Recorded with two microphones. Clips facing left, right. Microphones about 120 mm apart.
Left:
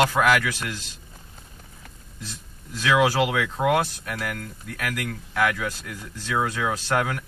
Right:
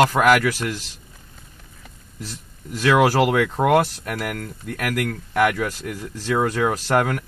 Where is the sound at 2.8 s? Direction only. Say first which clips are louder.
Right 4 dB; 50° right (ahead or behind).